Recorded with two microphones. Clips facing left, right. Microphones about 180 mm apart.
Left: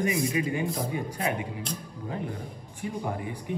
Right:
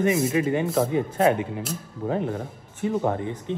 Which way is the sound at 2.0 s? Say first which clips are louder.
Right 10 dB; 90° right.